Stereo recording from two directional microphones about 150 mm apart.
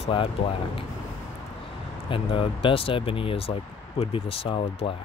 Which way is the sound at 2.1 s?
35° left (ahead or behind).